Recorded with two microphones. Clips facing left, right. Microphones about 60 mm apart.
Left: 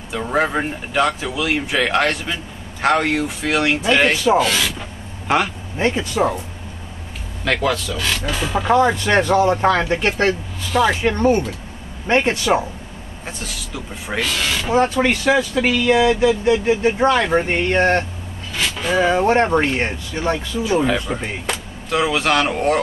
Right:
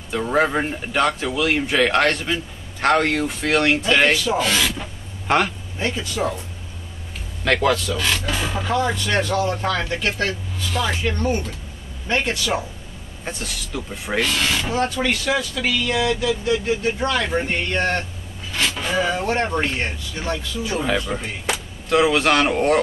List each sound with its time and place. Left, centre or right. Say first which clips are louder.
0.1 s speech: even; centre
4.1 s speech: left 4 dB; left
4.4 s speech: left 2 dB; centre
5.8 s speech: left 6 dB; left
7.4 s speech: right 1 dB; centre
8.6 s speech: left 7 dB; left
10.7 s speech: left 7 dB; centre
11.0 s speech: left 6 dB; left
13.2 s speech: right 1 dB; centre
14.7 s speech: left 5 dB; left
18.5 s a sound: left 2 dB; centre
18.9 s speech: left 7 dB; left
21.1 s speech: left 2 dB; centre
21.5 s speech: right 5 dB; centre